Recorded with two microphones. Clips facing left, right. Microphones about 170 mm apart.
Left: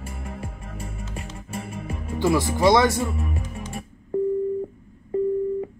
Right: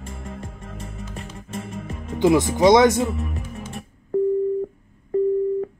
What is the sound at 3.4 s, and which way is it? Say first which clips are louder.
Music: even; 5° right (ahead or behind).